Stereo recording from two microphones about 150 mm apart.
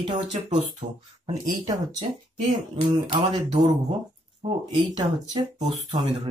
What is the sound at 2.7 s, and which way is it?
Speech, 35° right (ahead or behind).